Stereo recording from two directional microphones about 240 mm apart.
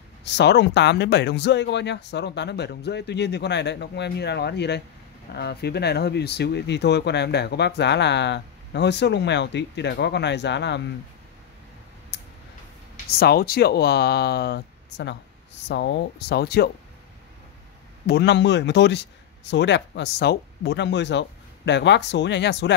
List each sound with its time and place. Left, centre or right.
0.2 s speech: left
12.1 s tick: left
12.9 s speech: left
18.0 s speech: left